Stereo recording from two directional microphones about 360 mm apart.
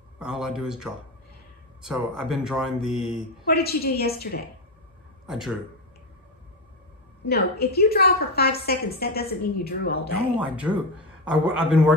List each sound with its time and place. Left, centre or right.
0.2 s speech: centre
3.4 s a woman's voice: left
5.2 s speech: centre
7.2 s a woman's voice: left
10.5 s speech: centre